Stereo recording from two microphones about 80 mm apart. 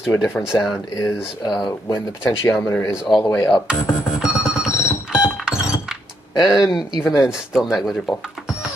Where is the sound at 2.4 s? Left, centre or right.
Left.